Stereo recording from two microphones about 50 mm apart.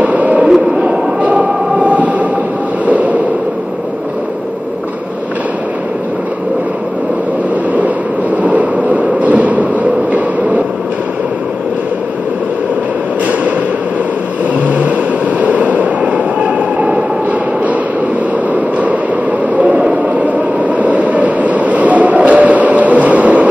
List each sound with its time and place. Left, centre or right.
0.0 s a sound: right
8.4 s a sound: right
14.7 s vehicle: right
15.4 s train: right
18.5 s vehicle: right
19.6 s train: right